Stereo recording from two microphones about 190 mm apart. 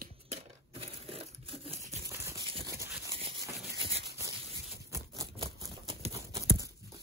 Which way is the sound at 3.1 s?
30° right (ahead or behind).